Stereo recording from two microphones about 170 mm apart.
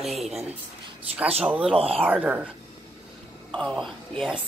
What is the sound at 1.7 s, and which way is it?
Speech, 35° right (ahead or behind).